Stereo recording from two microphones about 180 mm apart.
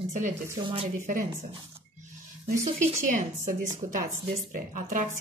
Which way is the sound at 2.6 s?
35° right (ahead or behind).